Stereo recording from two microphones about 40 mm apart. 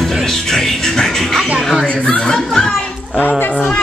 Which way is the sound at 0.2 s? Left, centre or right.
Centre.